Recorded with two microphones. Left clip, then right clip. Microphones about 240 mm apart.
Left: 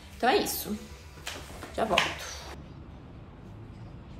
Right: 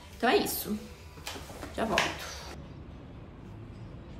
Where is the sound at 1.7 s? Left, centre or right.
Centre.